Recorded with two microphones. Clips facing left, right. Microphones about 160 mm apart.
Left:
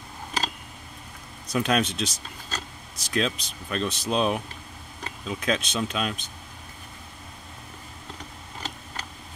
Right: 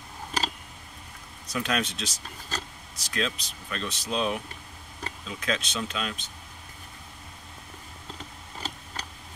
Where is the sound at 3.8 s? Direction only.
55° left (ahead or behind).